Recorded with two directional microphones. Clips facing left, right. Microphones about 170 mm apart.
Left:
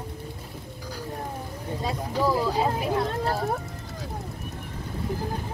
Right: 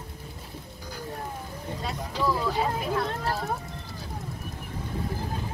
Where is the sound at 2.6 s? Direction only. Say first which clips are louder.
Left 2 dB; 30° left (ahead or behind).